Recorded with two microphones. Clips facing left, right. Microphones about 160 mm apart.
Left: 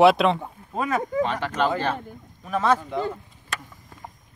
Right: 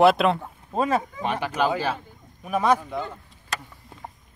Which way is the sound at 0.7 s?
30° right (ahead or behind).